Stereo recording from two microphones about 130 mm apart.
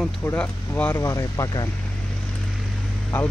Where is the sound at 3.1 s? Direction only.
15° left (ahead or behind).